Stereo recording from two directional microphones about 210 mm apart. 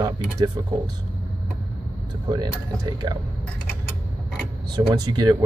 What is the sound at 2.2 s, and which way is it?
Speech, 20° right (ahead or behind).